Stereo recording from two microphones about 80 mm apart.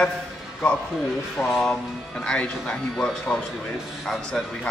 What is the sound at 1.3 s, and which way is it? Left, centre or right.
Speech, centre.